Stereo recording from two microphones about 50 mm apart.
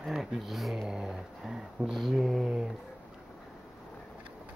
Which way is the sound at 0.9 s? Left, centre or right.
Centre.